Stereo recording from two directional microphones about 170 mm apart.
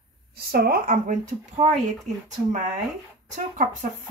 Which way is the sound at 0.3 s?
65° right (ahead or behind).